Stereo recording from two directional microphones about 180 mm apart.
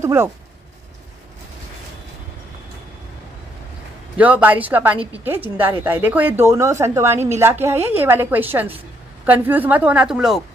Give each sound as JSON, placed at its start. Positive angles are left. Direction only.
{"t": 0.0, "sound": "speech", "side_deg": -15}
{"t": 4.2, "sound": "a woman's voice", "side_deg": -10}